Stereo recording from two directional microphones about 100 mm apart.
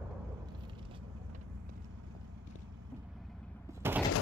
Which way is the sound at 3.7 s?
20° right (ahead or behind).